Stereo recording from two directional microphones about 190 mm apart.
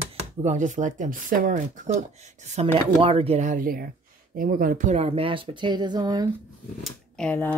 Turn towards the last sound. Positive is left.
turn(degrees=5)  # may be behind; listen again after turning